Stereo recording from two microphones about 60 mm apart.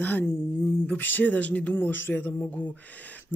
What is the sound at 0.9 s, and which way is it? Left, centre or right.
Speech, left.